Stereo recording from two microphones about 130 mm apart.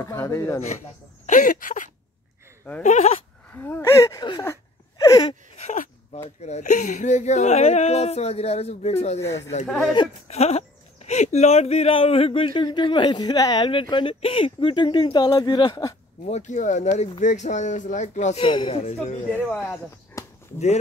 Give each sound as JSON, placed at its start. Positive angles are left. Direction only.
{"t": 0.0, "sound": "speech", "side_deg": 25}
{"t": 1.2, "sound": "a sound", "side_deg": 80}
{"t": 2.8, "sound": "speech", "side_deg": 60}
{"t": 3.4, "sound": "speech", "side_deg": 15}
{"t": 4.2, "sound": "a sound", "side_deg": 35}
{"t": 5.6, "sound": "a sound", "side_deg": 65}
{"t": 6.4, "sound": "speech", "side_deg": 65}
{"t": 16.3, "sound": "speech", "side_deg": 65}
{"t": 18.5, "sound": "speech", "side_deg": 45}
{"t": 19.5, "sound": "speech", "side_deg": 5}
{"t": 20.2, "sound": "a sound", "side_deg": 25}
{"t": 20.5, "sound": "speech", "side_deg": 60}